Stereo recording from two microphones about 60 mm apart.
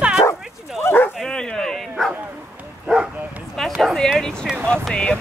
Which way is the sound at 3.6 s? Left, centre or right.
Centre.